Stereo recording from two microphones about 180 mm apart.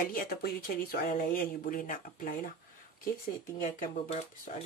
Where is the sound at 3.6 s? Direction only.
40° left (ahead or behind).